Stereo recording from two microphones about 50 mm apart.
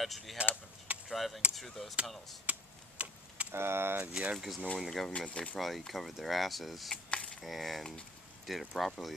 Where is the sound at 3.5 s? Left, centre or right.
Right.